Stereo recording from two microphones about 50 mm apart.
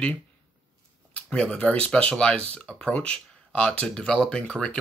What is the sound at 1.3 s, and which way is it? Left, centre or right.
Speech, centre.